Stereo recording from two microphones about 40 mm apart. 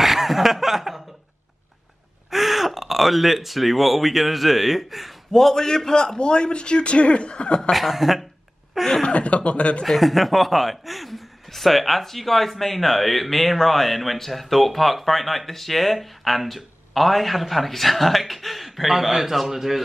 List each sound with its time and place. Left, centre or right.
0.0 s chuckle: centre
2.3 s speech: centre
5.3 s a man's voice: centre; by 7.7 s left
7.7 s speech: centre
9.0 s speech: left
9.8 s speech: centre